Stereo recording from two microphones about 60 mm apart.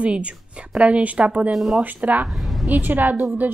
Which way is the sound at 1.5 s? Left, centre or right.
Centre.